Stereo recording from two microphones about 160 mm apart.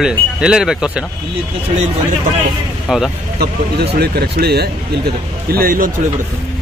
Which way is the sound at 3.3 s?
85° right.